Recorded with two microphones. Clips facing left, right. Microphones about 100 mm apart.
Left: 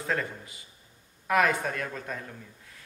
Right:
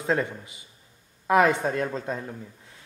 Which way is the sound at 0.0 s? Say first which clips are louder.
Right 5 dB; 25° right (ahead or behind).